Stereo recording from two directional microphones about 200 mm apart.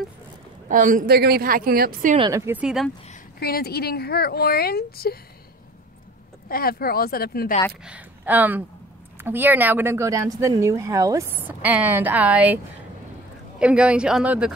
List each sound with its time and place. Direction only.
0.7 s a woman's voice: 40° right (ahead or behind)
2.1 s speech: 20° right (ahead or behind); by 2.9 s 5° right (ahead or behind)
3.3 s speech: 50° left (ahead or behind)
6.5 s speech: 50° left (ahead or behind)
7.8 s speech: 5° right (ahead or behind)
13.6 s speech: 5° right (ahead or behind)